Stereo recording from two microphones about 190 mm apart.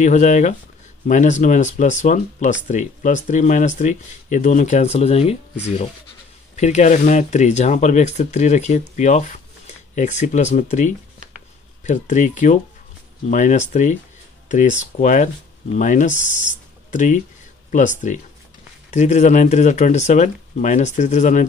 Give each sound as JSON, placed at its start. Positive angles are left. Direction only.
{"t": 0.0, "sound": "speech", "side_deg": 40}